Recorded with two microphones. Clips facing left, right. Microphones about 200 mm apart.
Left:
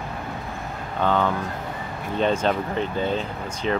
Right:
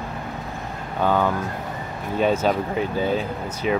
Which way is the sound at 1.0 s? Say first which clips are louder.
Right 1 dB; 10° right (ahead or behind).